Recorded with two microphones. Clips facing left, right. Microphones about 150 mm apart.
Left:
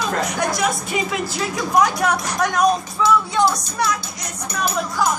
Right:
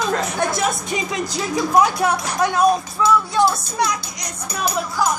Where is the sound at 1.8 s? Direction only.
10° right (ahead or behind).